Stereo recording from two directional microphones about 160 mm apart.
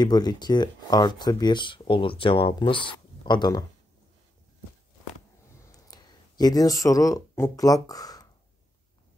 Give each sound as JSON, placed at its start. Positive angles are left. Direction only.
{"t": 0.0, "sound": "speech", "side_deg": 25}
{"t": 5.9, "sound": "speech", "side_deg": 25}